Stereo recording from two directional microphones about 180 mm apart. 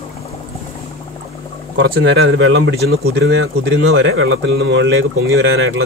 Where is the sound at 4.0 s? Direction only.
90° right.